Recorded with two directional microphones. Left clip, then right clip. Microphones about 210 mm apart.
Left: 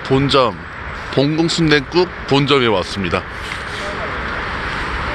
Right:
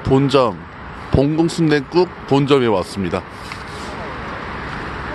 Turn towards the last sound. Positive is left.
turn(degrees=-15)  # may be behind; listen again after turning